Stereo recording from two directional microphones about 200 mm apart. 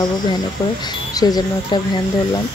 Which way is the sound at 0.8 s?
20° left (ahead or behind).